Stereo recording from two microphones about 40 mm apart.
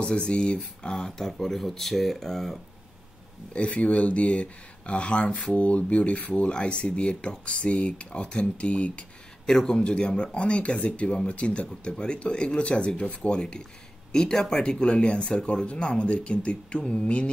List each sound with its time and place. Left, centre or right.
0.0 s speech: left
0.6 s speech: centre
3.5 s speech: left
9.5 s speech: centre